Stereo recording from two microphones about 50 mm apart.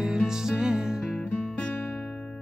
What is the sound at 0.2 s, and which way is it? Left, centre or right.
Music, centre.